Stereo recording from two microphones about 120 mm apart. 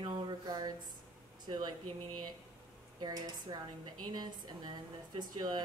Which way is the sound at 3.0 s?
35° right (ahead or behind).